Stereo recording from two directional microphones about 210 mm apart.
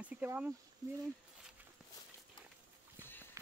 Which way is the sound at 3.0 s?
10° left (ahead or behind).